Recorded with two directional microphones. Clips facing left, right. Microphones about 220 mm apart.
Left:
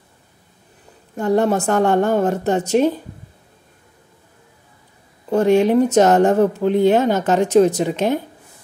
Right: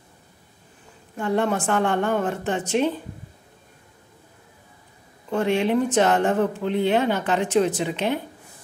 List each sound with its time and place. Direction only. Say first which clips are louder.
1.1 s speech: left 6 dB; 40° left (ahead or behind)
5.3 s speech: left 7 dB; 40° left (ahead or behind)